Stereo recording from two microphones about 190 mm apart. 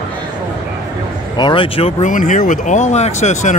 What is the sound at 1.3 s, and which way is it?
Speech, 25° left (ahead or behind).